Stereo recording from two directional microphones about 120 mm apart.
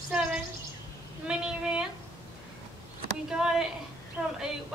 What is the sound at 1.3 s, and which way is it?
Speech, 5° right (ahead or behind).